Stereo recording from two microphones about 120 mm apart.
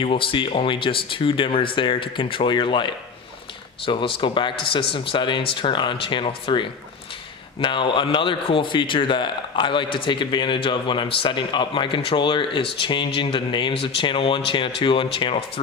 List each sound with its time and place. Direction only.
0.0 s a man's voice: 45° left (ahead or behind)